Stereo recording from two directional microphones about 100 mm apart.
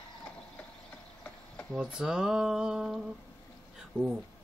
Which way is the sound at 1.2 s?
15° left (ahead or behind).